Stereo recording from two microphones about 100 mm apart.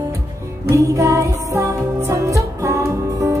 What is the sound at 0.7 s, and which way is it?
Music, 30° right (ahead or behind).